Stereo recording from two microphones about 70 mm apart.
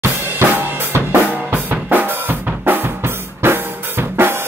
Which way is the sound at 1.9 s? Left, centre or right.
Right.